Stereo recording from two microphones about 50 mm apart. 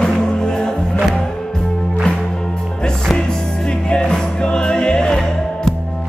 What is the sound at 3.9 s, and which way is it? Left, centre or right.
Music, centre.